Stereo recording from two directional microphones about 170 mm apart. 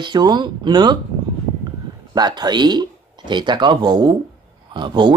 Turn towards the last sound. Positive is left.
turn(degrees=-25)  # may be behind; listen again after turning